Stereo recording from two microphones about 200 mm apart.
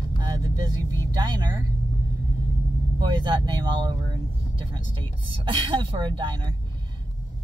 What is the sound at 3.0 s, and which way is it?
Speech, 20° right (ahead or behind).